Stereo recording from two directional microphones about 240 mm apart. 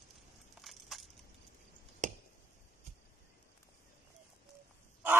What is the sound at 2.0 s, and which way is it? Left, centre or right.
Finger snapping, right.